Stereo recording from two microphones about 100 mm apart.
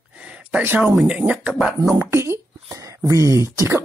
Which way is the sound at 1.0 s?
10° right (ahead or behind).